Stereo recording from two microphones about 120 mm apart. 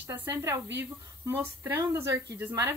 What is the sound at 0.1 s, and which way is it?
A woman's voice, 20° right (ahead or behind).